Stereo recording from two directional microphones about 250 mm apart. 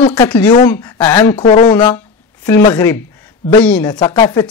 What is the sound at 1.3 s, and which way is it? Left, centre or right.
Speech, left.